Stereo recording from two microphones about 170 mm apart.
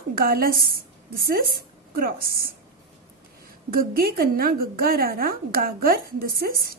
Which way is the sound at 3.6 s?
60° right (ahead or behind).